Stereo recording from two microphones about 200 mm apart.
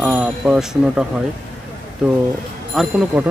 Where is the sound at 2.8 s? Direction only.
5° right (ahead or behind).